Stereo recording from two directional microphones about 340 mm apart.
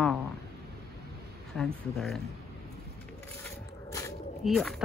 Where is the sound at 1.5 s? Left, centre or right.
Centre.